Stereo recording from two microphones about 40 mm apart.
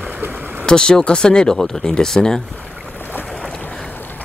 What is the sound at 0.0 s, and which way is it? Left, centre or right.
Vehicle, right.